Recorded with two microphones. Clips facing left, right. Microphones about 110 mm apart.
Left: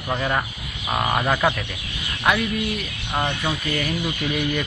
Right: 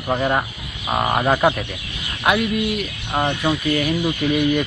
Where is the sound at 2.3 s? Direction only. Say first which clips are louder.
Right 2 dB; 5° right (ahead or behind).